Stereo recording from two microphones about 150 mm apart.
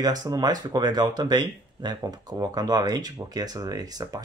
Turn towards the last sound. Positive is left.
turn(degrees=-25)  # may be behind; listen again after turning